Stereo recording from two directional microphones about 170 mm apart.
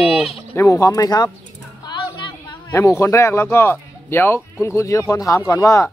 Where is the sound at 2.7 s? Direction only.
15° left (ahead or behind).